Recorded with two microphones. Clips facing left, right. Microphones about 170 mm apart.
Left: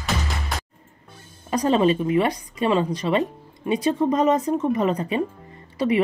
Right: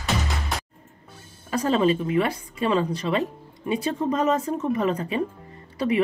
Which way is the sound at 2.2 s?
15° left (ahead or behind).